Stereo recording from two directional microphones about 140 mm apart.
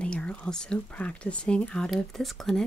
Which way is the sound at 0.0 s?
10° left (ahead or behind).